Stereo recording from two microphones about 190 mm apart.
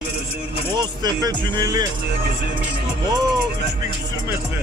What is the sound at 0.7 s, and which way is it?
Speech, 20° right (ahead or behind).